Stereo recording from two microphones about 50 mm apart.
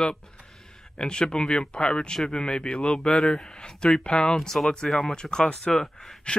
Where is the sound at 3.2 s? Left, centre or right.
Centre.